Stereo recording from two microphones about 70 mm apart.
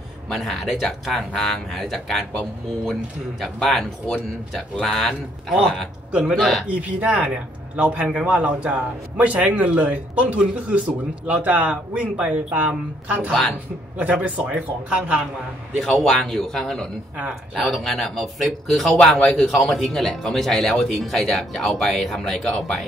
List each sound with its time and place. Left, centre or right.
0.3 s speech: centre
6.7 s a man's voice: centre
15.8 s speech: centre